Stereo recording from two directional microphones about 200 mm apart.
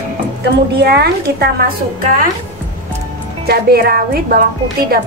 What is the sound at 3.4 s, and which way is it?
Speech, 50° right (ahead or behind).